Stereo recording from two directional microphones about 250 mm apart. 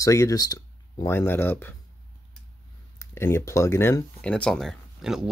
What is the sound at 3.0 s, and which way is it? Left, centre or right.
Speech, centre.